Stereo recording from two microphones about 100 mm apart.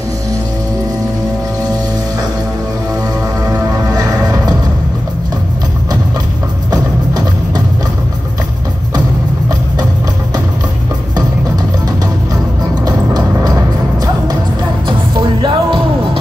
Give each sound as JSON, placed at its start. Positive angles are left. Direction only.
{"t": 3.8, "sound": "music", "side_deg": -40}
{"t": 6.7, "sound": "music", "side_deg": -40}
{"t": 12.8, "sound": "music", "side_deg": -40}